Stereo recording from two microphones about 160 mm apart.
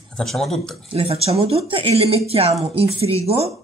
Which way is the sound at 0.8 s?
35° right (ahead or behind).